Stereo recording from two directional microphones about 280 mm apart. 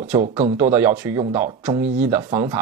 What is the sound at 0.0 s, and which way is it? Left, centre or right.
Speech, right.